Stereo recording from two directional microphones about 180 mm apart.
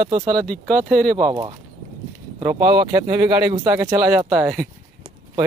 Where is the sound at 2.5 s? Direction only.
25° right (ahead or behind).